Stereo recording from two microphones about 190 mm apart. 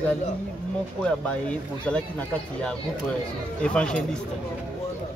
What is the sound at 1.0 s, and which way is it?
Speech, 5° left (ahead or behind).